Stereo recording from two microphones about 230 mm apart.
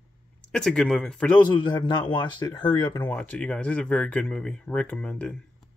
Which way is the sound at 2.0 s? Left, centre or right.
Left.